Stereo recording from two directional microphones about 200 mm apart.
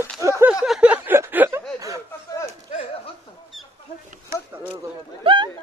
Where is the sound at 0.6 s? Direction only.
5° right (ahead or behind).